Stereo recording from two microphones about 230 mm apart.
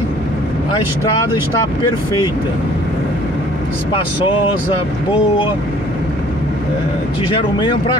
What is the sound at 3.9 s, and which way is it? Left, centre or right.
Speech, left.